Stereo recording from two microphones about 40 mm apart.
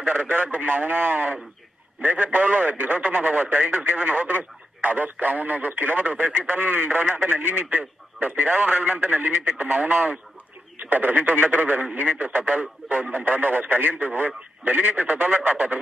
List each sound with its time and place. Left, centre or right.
0.0 s speech: right
9.1 s speech: right
10.8 s speech: right